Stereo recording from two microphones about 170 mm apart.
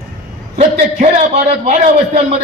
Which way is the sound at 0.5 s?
40° right (ahead or behind).